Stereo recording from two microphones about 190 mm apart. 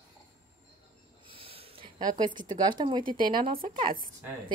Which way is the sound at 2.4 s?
25° right (ahead or behind).